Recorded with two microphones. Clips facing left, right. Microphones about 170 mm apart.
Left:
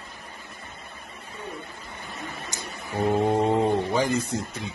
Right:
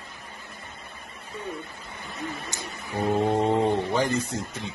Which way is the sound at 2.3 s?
50° left (ahead or behind).